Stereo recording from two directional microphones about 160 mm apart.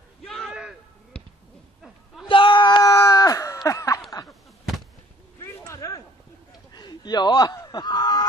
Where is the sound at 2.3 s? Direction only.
30° left (ahead or behind).